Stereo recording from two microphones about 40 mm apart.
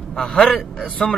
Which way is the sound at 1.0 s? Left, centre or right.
Centre.